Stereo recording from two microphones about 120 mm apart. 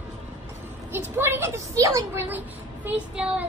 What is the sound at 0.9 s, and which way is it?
A woman's voice, 20° right (ahead or behind).